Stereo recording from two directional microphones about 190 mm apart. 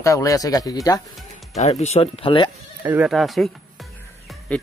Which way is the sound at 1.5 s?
35° left (ahead or behind).